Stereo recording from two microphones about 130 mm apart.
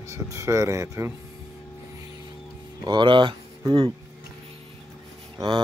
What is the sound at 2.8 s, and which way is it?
Speech, 35° right (ahead or behind).